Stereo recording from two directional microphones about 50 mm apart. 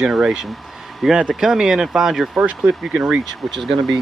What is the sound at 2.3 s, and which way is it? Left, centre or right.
Speech, right.